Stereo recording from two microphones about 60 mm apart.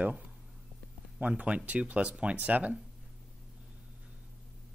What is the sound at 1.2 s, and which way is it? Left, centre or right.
Speech, right.